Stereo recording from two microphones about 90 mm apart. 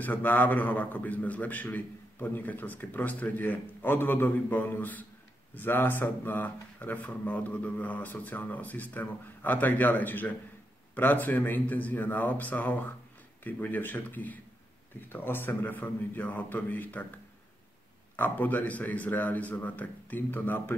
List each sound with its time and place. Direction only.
0.0 s a man's voice: 20° left (ahead or behind)
18.1 s a man's voice: 20° left (ahead or behind)